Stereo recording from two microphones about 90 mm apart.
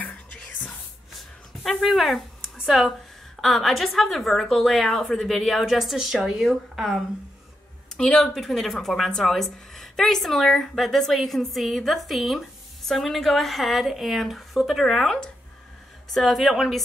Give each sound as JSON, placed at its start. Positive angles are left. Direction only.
{"t": 0.0, "sound": "music", "side_deg": 15}
{"t": 1.1, "sound": "a sound", "side_deg": 0}
{"t": 3.3, "sound": "speech", "side_deg": 0}
{"t": 8.0, "sound": "speech", "side_deg": 10}